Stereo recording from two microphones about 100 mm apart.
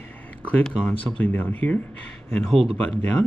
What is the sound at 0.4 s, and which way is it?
Speech, 15° left (ahead or behind).